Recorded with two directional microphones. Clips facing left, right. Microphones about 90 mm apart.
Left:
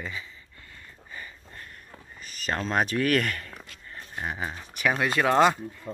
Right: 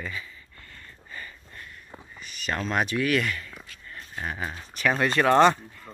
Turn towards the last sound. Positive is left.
turn(degrees=5)  # may be behind; listen again after turning